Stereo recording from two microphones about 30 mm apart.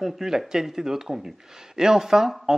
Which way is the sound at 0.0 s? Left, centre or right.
Centre.